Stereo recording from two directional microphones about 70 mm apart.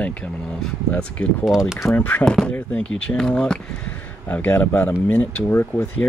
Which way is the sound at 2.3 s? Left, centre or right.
Centre.